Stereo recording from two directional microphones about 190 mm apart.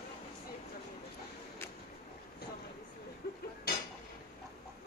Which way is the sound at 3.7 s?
55° left (ahead or behind).